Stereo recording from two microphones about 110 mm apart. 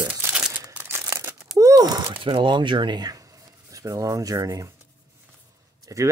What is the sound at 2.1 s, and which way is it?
Speech, 50° right (ahead or behind).